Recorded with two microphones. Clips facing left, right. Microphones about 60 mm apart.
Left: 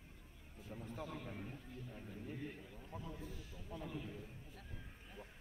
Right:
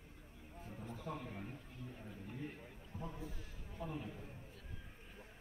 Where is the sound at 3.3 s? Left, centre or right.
Right.